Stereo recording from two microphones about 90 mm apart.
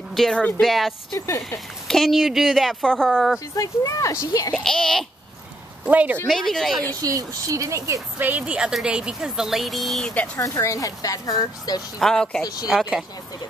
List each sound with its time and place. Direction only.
0.1 s speech: centre (ahead or behind)
1.1 s speech: 40° left (ahead or behind)
1.9 s speech: centre (ahead or behind)
3.5 s speech: 40° left (ahead or behind)
4.6 s speech: 5° left (ahead or behind)
5.9 s a woman's voice: 20° right (ahead or behind)
6.2 s speech: 5° left (ahead or behind)
7.0 s speech: 40° right (ahead or behind)
8.2 s a woman's voice: 15° right (ahead or behind); by 10.1 s centre (ahead or behind)
10.3 s speech: 35° left (ahead or behind)
12.0 s speech: 5° left (ahead or behind)
12.6 s a woman's voice: 5° right (ahead or behind)